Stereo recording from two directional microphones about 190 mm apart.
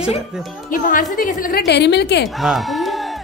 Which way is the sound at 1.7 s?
60° left (ahead or behind).